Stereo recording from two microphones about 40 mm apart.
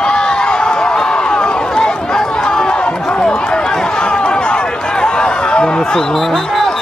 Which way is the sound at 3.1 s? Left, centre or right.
Left.